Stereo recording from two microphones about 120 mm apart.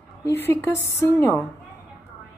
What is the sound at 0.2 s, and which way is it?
A woman's voice, 20° left (ahead or behind).